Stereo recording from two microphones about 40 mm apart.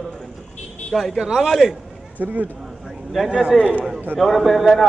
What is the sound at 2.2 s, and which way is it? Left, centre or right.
Speech, right.